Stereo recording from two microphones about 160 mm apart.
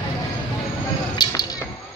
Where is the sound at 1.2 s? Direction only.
25° left (ahead or behind).